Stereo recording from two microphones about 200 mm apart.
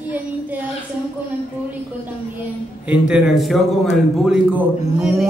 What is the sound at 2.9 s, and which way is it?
A man's voice, 5° right (ahead or behind).